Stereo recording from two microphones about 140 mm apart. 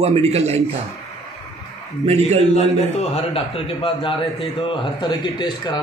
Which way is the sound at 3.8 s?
40° left (ahead or behind).